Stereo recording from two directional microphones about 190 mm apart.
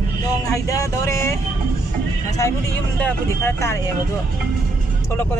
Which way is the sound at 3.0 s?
15° left (ahead or behind).